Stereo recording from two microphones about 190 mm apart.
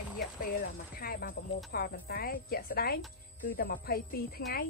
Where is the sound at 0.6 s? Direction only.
50° left (ahead or behind).